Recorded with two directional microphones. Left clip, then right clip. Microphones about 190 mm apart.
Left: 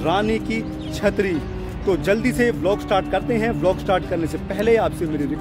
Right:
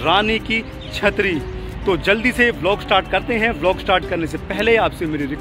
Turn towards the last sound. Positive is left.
turn(degrees=10)  # may be behind; listen again after turning